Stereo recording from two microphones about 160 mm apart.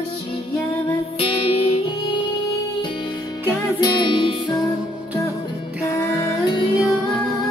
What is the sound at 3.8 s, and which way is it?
Music, 25° left (ahead or behind).